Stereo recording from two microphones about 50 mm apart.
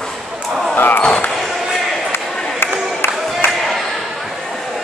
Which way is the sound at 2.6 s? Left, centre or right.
Left.